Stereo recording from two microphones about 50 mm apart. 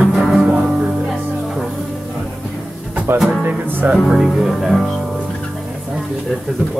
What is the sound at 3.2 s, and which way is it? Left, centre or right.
Music, right.